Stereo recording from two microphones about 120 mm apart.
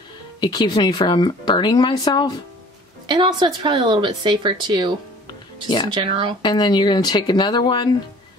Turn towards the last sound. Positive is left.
turn(degrees=40)  # may be behind; listen again after turning